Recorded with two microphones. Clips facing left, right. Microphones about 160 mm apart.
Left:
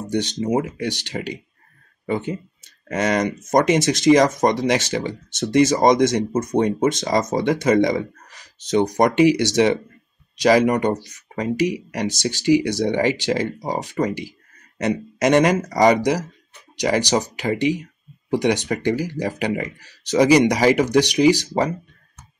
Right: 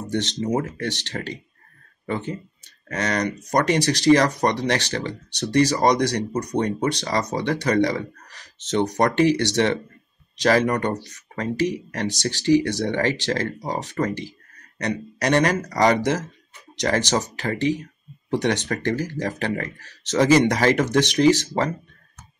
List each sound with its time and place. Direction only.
0.4 s speech: 15° left (ahead or behind)